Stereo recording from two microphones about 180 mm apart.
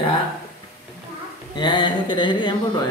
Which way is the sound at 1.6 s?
25° left (ahead or behind).